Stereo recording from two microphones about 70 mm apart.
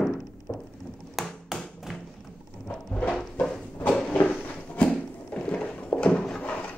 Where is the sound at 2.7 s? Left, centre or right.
Centre.